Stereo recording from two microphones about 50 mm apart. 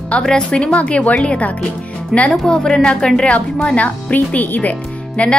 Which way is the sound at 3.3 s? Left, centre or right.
Left.